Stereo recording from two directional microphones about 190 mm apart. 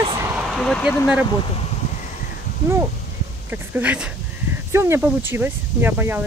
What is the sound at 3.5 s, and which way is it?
Speech, 10° right (ahead or behind).